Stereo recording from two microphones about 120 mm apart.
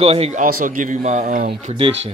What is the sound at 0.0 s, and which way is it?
Speech, 55° right (ahead or behind).